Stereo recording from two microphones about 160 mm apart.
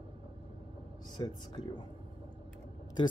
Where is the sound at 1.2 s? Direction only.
30° left (ahead or behind).